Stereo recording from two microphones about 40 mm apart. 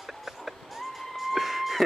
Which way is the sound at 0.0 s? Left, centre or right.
Centre.